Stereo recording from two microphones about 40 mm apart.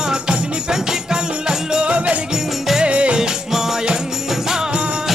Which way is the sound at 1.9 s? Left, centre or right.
Right.